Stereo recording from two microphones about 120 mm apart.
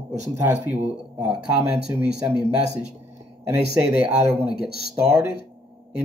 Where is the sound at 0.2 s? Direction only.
20° right (ahead or behind).